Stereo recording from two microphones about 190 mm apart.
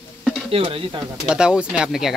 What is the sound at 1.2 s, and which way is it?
Speech, 5° right (ahead or behind).